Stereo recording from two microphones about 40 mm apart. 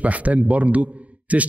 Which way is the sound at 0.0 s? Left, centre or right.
Right.